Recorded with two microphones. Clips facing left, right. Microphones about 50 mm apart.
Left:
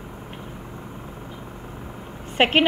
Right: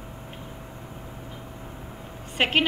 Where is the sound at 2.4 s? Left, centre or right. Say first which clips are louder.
Left 4 dB; left.